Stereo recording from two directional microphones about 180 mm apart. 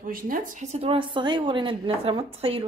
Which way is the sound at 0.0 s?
50° right (ahead or behind).